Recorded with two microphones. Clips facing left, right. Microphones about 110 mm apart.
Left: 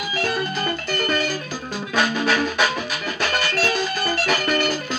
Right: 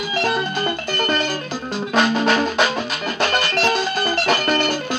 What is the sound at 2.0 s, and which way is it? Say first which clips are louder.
Music: right 3 dB; 30° right (ahead or behind).